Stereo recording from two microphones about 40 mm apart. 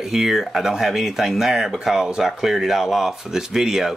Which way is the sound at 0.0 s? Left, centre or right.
Centre.